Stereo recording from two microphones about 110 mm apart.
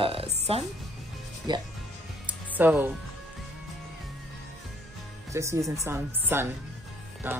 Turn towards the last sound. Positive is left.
turn(degrees=-20)  # may be behind; listen again after turning